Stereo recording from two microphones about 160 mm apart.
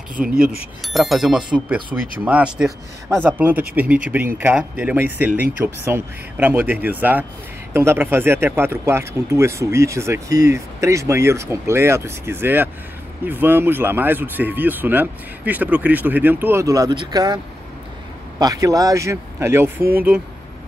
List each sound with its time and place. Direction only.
0.1 s speech: 60° right (ahead or behind)
0.8 s speech: centre (ahead or behind)
3.3 s speech: 10° right (ahead or behind)
18.4 s a man's voice: 20° right (ahead or behind)